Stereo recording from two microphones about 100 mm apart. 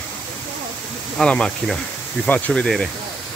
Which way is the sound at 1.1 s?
10° left (ahead or behind).